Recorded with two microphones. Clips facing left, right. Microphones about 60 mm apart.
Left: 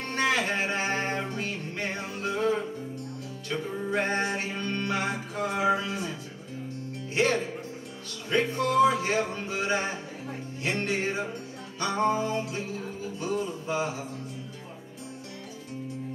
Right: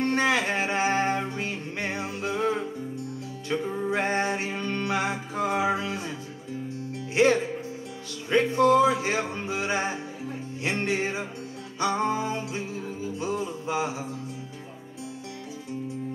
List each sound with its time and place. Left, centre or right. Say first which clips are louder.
0.0 s music: right 3 dB; right
7.2 s music: right 4 dB; right
13.2 s a sound: even; right